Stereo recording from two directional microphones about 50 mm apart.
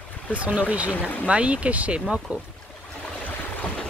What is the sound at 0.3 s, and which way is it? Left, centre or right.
Speech, right.